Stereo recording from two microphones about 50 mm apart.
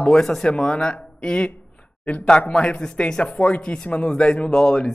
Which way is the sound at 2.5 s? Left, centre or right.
Centre.